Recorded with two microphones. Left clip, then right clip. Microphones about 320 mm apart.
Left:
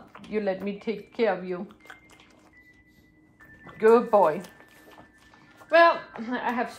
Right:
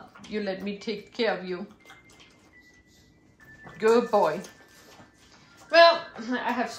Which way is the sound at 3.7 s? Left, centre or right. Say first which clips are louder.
Left 3 dB; centre.